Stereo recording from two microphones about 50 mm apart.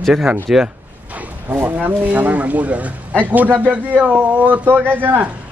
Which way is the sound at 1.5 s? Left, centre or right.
Right.